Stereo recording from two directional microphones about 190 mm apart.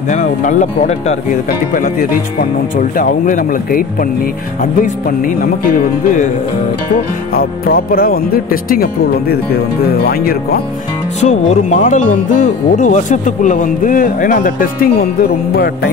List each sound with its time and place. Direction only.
0.1 s speech: 40° left (ahead or behind)
5.2 s speech: 45° left (ahead or behind)
7.3 s speech: 50° left (ahead or behind)
11.1 s speech: 35° left (ahead or behind); by 15.9 s 55° left (ahead or behind)